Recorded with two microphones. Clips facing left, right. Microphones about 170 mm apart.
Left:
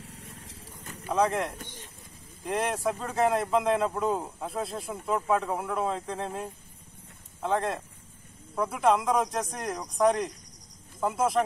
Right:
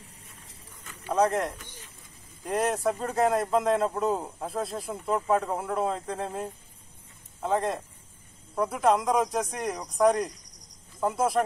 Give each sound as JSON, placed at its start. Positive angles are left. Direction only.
{"t": 0.0, "sound": "vehicle", "side_deg": 85}
{"t": 1.0, "sound": "a man's voice", "side_deg": 0}